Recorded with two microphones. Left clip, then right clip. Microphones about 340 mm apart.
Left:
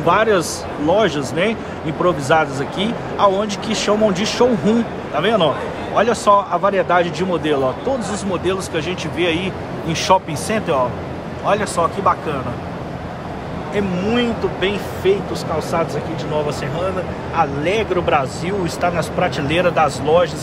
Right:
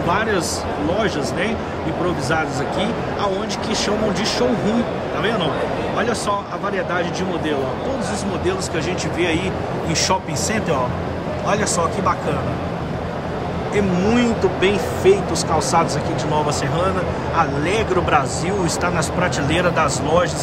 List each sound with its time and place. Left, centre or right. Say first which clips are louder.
0.1 s speech: left 6 dB; centre
13.7 s speech: even; centre
17.4 s speech: left 2 dB; centre